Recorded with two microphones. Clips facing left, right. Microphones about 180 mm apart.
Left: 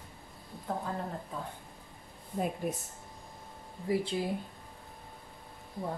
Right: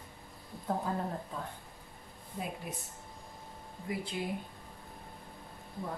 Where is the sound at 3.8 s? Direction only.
30° left (ahead or behind).